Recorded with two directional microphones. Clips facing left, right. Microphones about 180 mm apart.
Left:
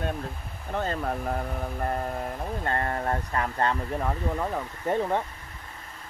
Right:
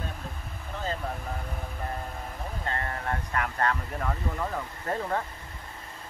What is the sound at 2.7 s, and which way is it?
Speech, 40° left (ahead or behind).